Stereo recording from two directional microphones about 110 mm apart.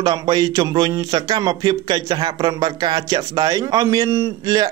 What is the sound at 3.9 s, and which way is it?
Speech, 25° right (ahead or behind).